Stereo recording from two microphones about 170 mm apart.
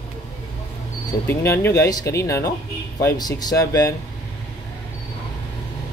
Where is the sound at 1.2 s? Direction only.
15° left (ahead or behind).